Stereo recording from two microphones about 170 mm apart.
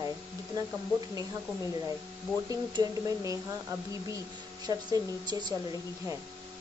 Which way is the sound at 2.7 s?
20° right (ahead or behind).